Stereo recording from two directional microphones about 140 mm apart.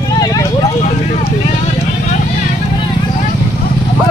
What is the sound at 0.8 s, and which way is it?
Speech, 55° left (ahead or behind).